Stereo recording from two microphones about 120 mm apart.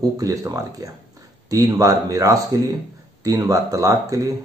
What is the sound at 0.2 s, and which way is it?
Speech, 30° right (ahead or behind).